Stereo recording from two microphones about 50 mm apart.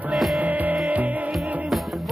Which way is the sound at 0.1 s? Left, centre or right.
Centre.